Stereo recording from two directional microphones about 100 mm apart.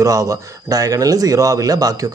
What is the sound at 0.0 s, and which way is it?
Speech, 35° right (ahead or behind).